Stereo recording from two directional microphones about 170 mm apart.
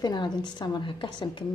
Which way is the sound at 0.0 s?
25° left (ahead or behind).